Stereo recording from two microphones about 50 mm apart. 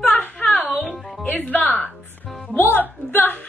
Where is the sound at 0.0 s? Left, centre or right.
Left.